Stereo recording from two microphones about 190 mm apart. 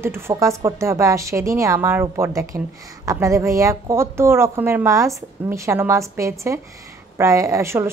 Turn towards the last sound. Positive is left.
turn(degrees=-15)  # may be behind; listen again after turning